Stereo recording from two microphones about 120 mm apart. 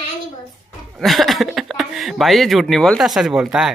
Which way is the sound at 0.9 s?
Centre (ahead or behind).